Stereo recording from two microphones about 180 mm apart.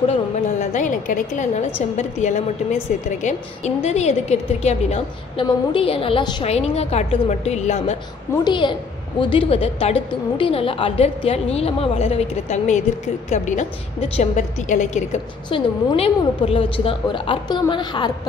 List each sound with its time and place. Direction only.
0.6 s a woman's voice: 45° left (ahead or behind)
8.5 s a woman's voice: 25° left (ahead or behind); by 15.0 s 45° left (ahead or behind)
15.5 s a woman's voice: 30° left (ahead or behind)